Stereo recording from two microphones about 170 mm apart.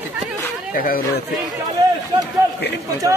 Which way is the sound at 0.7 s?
55° left (ahead or behind).